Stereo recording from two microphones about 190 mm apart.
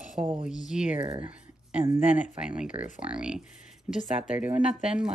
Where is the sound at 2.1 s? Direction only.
5° right (ahead or behind).